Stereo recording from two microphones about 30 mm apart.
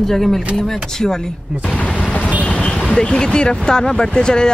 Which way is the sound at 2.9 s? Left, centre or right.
Left.